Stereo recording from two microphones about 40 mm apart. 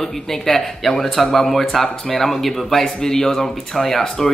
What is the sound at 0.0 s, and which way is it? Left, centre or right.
A man's voice, centre.